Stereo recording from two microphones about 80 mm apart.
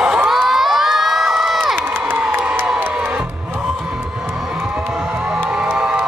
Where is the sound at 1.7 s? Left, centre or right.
Right.